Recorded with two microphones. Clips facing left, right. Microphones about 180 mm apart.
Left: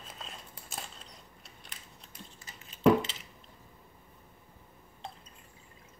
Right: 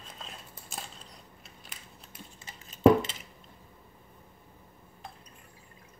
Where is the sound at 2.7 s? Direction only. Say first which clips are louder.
Right 3 dB; 45° right (ahead or behind).